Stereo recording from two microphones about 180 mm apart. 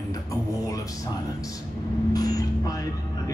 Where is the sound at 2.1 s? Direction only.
20° left (ahead or behind).